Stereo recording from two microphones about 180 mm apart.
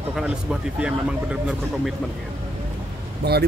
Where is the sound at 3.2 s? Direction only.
65° right (ahead or behind).